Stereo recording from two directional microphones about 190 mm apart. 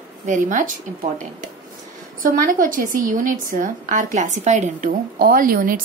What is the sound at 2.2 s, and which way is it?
A woman's voice, 45° right (ahead or behind).